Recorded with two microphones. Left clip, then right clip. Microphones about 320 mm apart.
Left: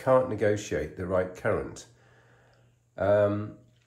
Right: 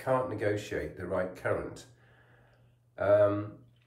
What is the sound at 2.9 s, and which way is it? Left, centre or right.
Speech, centre.